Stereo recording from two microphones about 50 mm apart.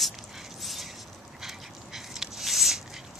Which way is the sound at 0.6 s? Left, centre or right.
Centre.